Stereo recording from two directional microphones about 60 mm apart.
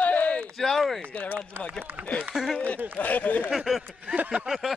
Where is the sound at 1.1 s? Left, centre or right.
Left.